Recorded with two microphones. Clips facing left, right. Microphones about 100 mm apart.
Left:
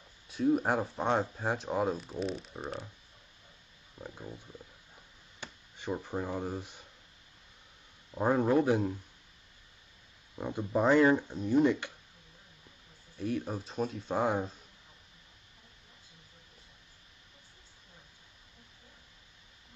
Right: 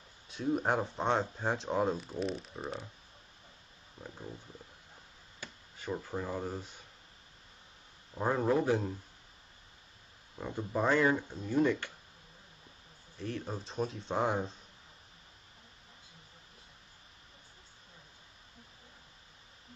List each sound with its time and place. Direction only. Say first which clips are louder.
0.3 s speech: left 3 dB; centre (ahead or behind)
5.4 s a sound: left 3 dB; 20° left (ahead or behind)
5.9 s speech: left 1 dB; 15° left (ahead or behind)
8.1 s speech: left 3 dB; 10° left (ahead or behind)
10.3 s speech: left 3 dB; 15° left (ahead or behind)
13.2 s speech: left 4 dB; 10° left (ahead or behind)